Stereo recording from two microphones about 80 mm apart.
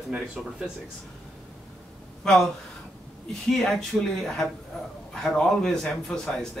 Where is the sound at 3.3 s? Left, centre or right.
Centre.